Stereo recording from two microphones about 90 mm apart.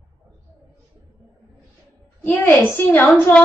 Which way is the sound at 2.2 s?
25° left (ahead or behind).